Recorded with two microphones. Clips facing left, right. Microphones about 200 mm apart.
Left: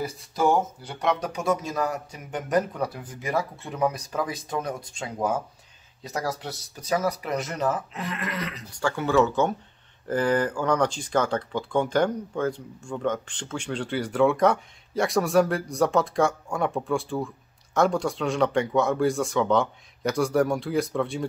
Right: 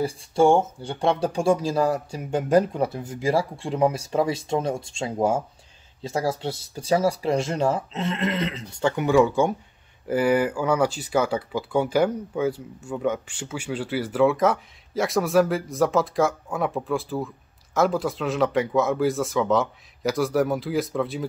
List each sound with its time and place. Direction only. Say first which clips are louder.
0.0 s speech: right 5 dB; 30° right (ahead or behind); by 21.3 s centre (ahead or behind)